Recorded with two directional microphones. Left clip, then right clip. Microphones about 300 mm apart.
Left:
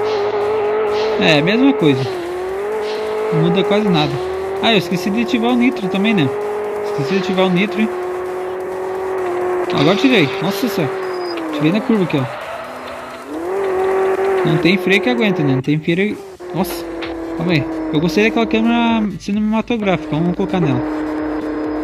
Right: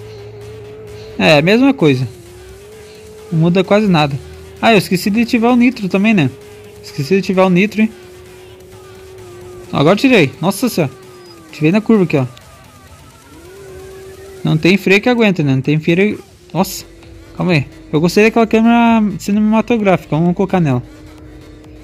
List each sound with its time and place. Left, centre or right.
0.1 s vehicle: left
1.2 s speech: centre
3.5 s speech: centre
4.8 s speech: left
5.3 s speech: centre
9.8 s speech: centre
14.6 s speech: centre